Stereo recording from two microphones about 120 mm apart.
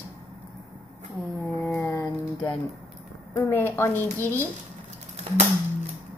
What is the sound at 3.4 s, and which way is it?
Speech, 20° left (ahead or behind).